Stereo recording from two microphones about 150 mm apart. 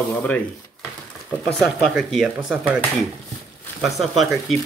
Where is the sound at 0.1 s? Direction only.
10° left (ahead or behind).